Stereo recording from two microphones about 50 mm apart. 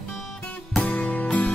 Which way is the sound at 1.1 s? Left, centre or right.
Left.